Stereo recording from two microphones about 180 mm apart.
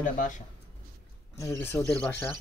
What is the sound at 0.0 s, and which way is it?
Speech, 45° left (ahead or behind).